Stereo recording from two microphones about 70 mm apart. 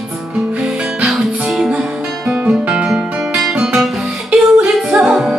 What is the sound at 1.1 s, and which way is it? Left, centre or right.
Music, centre.